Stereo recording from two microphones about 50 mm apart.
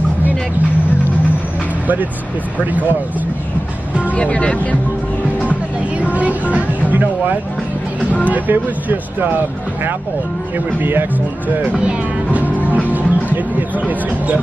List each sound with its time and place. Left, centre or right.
2.6 s speech: right
4.2 s speech: left
6.9 s speech: right
10.8 s speech: right
11.6 s speech: right